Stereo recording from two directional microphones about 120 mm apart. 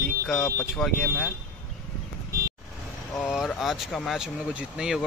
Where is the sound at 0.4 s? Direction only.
20° left (ahead or behind).